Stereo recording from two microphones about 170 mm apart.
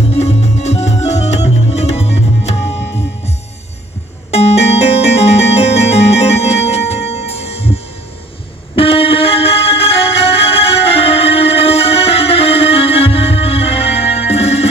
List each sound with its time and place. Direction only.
0.1 s music: 40° left (ahead or behind)
4.3 s music: 35° left (ahead or behind)